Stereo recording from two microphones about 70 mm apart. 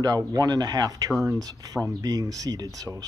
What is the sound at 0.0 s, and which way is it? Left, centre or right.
Speech, right.